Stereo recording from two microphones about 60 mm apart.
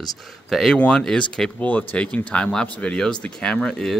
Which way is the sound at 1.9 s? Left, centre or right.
Centre.